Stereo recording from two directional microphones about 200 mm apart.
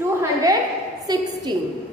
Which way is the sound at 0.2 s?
15° right (ahead or behind).